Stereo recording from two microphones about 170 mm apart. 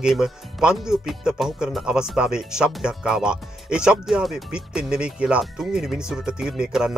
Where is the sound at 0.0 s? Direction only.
5° right (ahead or behind).